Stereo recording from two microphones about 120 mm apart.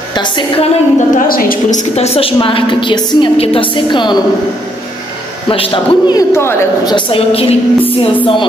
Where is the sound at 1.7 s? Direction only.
65° left (ahead or behind); by 3.3 s 40° left (ahead or behind).